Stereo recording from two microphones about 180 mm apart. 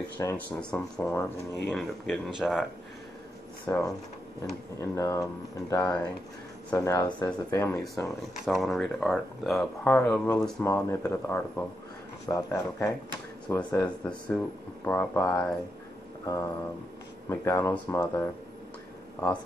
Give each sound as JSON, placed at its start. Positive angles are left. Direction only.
{"t": 0.2, "sound": "speech", "side_deg": 15}
{"t": 0.6, "sound": "speech", "side_deg": 5}
{"t": 1.7, "sound": "speech", "side_deg": 0}
{"t": 3.6, "sound": "speech", "side_deg": 10}
{"t": 7.8, "sound": "speech", "side_deg": 0}